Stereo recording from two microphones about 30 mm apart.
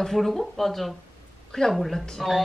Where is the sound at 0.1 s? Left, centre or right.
Centre.